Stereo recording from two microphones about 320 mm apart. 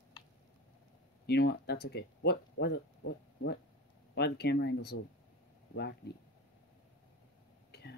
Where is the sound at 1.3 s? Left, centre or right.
Left.